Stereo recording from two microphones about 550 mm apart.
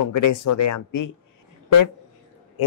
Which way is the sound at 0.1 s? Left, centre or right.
Left.